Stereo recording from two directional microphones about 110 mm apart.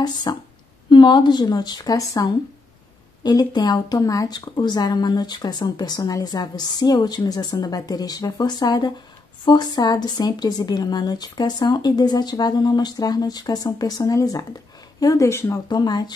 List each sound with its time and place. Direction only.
0.0 s speech: 40° left (ahead or behind)
15.7 s speech: 40° left (ahead or behind)